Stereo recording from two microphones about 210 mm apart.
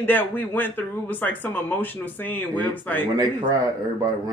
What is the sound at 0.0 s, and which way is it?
Speech, 10° left (ahead or behind).